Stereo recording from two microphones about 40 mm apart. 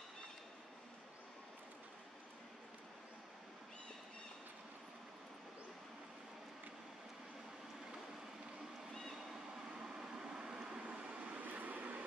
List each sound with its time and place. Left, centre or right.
9.1 s vehicle: centre
9.8 s vehicle: centre
11.4 s vehicle: right